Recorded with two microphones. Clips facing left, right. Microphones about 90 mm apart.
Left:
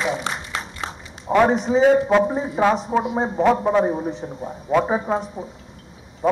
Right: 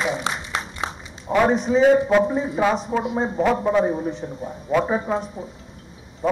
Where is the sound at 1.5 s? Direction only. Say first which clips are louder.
Even; 20° left (ahead or behind).